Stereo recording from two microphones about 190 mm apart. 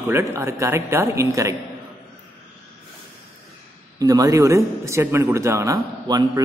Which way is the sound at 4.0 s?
20° right (ahead or behind).